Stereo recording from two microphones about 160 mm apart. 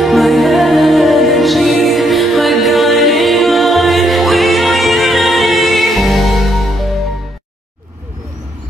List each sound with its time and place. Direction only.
0.0 s music: centre (ahead or behind)